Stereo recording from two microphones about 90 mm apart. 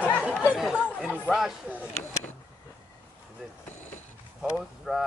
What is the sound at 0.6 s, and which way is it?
Chatter, 5° right (ahead or behind).